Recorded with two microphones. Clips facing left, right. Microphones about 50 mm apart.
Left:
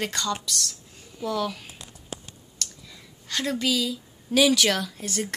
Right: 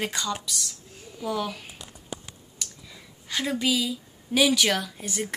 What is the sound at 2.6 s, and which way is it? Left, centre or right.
Speech, centre.